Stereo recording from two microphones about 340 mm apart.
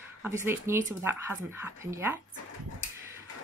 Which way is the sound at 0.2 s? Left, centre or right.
Centre.